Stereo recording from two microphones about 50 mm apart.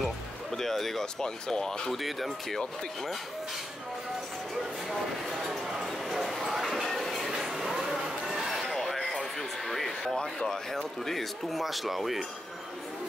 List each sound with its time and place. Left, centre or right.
0.0 s speech: centre
4.8 s bow-wow: centre
10.1 s speech: centre
11.1 s speech: centre